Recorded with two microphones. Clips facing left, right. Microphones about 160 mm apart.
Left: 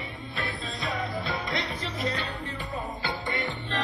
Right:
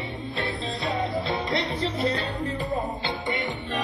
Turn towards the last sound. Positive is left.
turn(degrees=-20)  # may be behind; listen again after turning